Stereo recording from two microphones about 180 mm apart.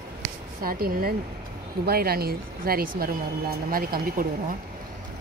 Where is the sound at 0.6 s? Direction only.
55° right (ahead or behind).